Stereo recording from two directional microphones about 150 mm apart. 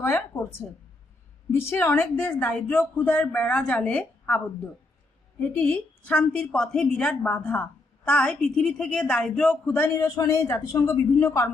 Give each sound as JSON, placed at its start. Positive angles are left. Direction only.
{"t": 0.0, "sound": "a woman's voice", "side_deg": 15}
{"t": 1.7, "sound": "a woman's voice", "side_deg": 15}
{"t": 5.4, "sound": "a woman's voice", "side_deg": 10}